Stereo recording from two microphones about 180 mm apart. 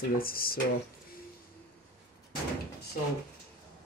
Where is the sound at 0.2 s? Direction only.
55° left (ahead or behind).